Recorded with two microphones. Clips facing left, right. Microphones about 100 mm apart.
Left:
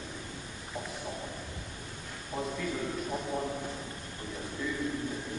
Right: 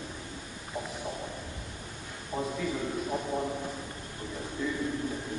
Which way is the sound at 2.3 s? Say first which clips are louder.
Right 2 dB; 5° right (ahead or behind).